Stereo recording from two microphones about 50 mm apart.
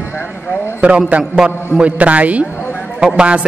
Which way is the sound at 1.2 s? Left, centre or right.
Centre.